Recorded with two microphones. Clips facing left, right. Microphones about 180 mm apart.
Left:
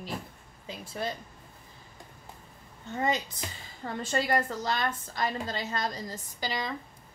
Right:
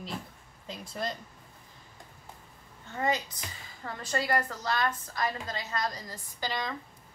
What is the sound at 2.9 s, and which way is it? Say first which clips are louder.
A woman's voice: left 1 dB; 20° left (ahead or behind).